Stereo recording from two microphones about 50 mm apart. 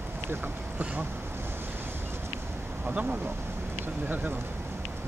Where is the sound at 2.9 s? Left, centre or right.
Right.